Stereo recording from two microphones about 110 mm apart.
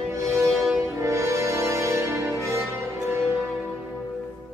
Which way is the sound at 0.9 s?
25° right (ahead or behind).